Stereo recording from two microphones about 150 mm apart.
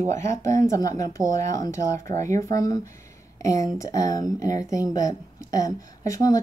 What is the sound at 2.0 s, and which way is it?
Speech, 55° right (ahead or behind).